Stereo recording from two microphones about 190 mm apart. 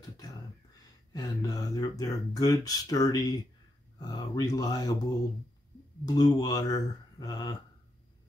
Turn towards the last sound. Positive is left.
turn(degrees=20)  # may be behind; listen again after turning